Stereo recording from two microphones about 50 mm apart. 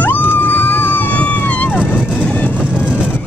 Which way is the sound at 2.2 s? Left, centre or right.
Left.